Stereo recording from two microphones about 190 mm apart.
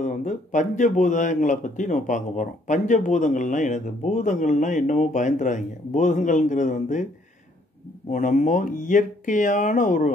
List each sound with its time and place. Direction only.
0.0 s speech: 40° left (ahead or behind)
8.1 s speech: 40° left (ahead or behind)